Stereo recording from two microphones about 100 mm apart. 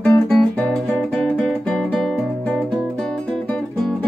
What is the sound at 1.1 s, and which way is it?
Music, 5° left (ahead or behind).